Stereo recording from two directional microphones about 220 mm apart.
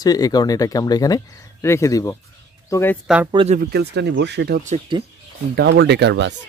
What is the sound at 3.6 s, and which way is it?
Speech, 45° right (ahead or behind).